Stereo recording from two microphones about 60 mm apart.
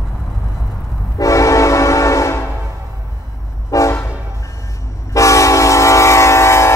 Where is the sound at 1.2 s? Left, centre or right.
Left.